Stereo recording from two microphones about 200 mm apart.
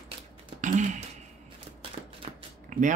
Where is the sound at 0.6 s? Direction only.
40° right (ahead or behind).